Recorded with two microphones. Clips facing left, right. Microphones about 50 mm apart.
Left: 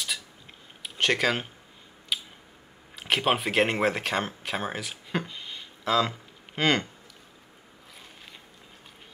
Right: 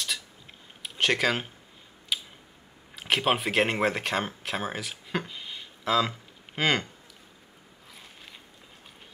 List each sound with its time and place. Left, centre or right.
0.8 s speech: centre
2.1 s a sound: centre
3.0 s speech: centre